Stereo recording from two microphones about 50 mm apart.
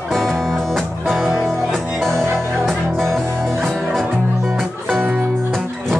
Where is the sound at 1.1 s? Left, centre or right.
Centre.